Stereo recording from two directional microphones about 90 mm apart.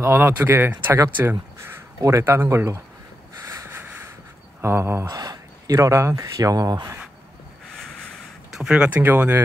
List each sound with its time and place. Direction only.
0.0 s speech: 25° right (ahead or behind)
2.0 s speech: 40° right (ahead or behind)
2.2 s speech: 25° right (ahead or behind)
3.6 s a sound: 25° right (ahead or behind)
4.6 s speech: 30° right (ahead or behind)
5.0 s speech: 45° right (ahead or behind)
8.5 s speech: 10° right (ahead or behind)
9.0 s speech: 25° right (ahead or behind)